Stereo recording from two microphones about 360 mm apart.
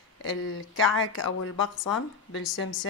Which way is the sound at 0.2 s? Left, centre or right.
Left.